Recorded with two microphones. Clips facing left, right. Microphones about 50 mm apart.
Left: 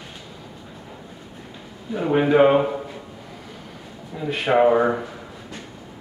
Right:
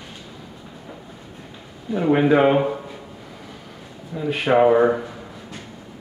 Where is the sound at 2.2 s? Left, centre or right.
Centre.